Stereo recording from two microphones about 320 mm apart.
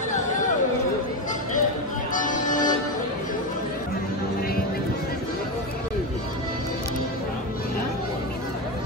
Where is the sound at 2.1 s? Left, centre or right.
Left.